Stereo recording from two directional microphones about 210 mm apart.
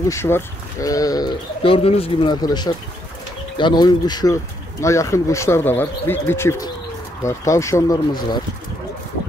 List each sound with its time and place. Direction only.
0.1 s speech: 15° left (ahead or behind)